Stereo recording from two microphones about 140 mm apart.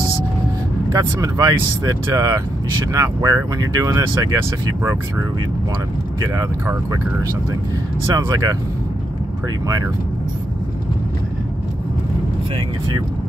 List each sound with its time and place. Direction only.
0.9 s speech: 25° right (ahead or behind)
6.3 s speech: 25° right (ahead or behind)
8.3 s speech: 25° right (ahead or behind)